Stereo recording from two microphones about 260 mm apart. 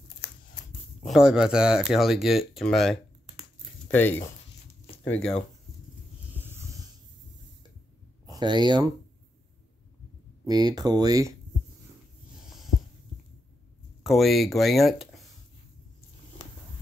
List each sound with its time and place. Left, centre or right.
1.0 s speech: centre
6.3 s wheeze: centre
8.3 s speech: centre
10.4 s speech: centre
14.0 s speech: centre